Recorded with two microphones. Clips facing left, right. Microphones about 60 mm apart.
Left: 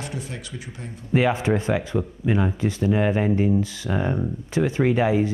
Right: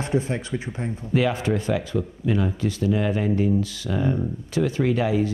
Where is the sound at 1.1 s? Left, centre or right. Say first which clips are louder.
Left 2 dB; left.